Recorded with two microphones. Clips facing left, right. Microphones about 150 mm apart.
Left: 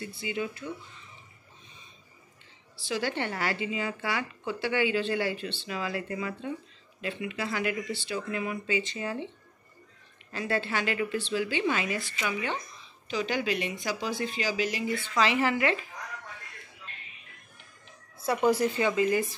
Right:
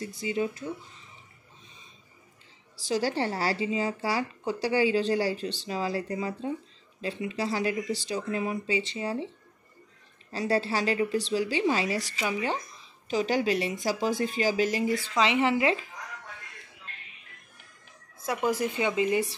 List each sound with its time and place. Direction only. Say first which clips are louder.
0.0 s a woman's voice: right 4 dB; 40° right (ahead or behind)
2.8 s a woman's voice: right 3 dB; 40° right (ahead or behind)
10.3 s a woman's voice: right 3 dB; 35° right (ahead or behind)
15.1 s speech: right 1 dB; 25° right (ahead or behind)
18.2 s a woman's voice: left 3 dB; 10° right (ahead or behind)